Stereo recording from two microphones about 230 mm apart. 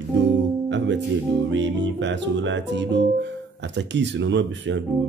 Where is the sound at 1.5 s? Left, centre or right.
Right.